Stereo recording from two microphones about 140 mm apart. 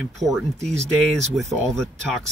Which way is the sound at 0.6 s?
55° right (ahead or behind).